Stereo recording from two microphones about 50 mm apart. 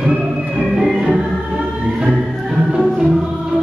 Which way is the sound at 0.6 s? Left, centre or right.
Centre.